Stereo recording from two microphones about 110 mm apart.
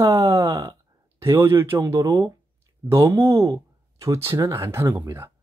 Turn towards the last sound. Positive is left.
turn(degrees=-20)  # may be behind; listen again after turning